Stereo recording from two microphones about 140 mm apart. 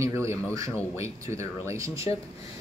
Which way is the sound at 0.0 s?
20° right (ahead or behind).